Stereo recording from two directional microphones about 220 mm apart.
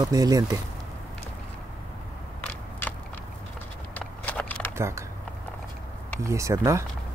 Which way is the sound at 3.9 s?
5° left (ahead or behind).